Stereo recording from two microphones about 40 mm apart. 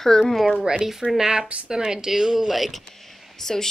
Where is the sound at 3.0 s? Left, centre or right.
Centre.